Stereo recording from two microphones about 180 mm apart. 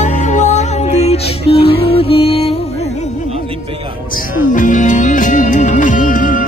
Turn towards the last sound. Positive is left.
turn(degrees=45)  # may be behind; listen again after turning